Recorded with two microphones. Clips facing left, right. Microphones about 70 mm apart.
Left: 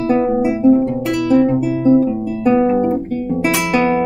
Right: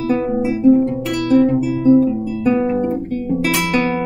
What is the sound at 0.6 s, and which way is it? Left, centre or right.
Guitar, centre.